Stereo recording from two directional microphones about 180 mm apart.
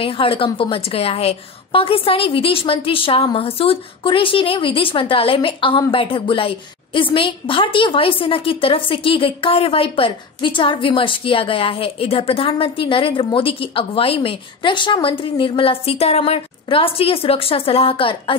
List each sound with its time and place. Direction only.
0.0 s a woman's voice: 30° left (ahead or behind)